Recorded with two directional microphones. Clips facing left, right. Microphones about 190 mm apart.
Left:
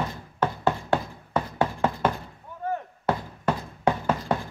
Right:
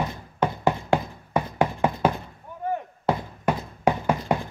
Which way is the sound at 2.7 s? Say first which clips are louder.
Right 2 dB; 15° right (ahead or behind).